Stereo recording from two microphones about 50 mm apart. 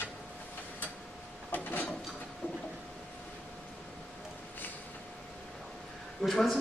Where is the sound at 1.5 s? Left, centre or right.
Left.